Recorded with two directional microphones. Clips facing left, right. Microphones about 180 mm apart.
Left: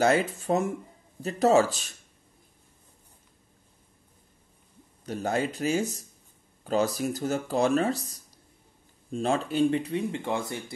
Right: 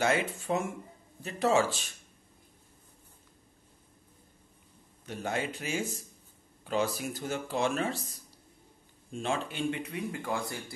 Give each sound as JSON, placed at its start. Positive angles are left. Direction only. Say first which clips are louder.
{"t": 0.0, "sound": "speech", "louder": "left 5 dB", "side_deg": 40}
{"t": 5.0, "sound": "speech", "louder": "left 5 dB", "side_deg": 40}